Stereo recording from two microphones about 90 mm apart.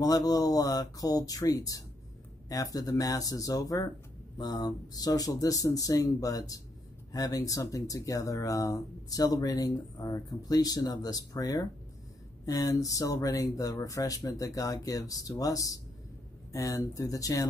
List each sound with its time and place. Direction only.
0.0 s speech: 45° left (ahead or behind)